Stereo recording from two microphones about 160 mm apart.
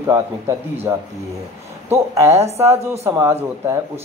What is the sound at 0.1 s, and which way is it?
Speech, 15° right (ahead or behind).